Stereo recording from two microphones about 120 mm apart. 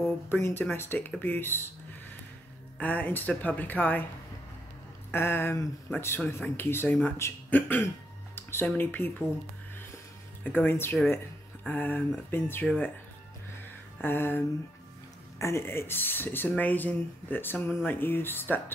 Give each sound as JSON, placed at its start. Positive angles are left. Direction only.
{"t": 0.3, "sound": "speech", "side_deg": 15}
{"t": 2.8, "sound": "speech", "side_deg": 15}
{"t": 5.1, "sound": "speech", "side_deg": 20}
{"t": 8.4, "sound": "music", "side_deg": 20}
{"t": 8.6, "sound": "speech", "side_deg": 15}
{"t": 10.4, "sound": "speech", "side_deg": 15}
{"t": 12.6, "sound": "speech", "side_deg": 5}
{"t": 14.0, "sound": "speech", "side_deg": 15}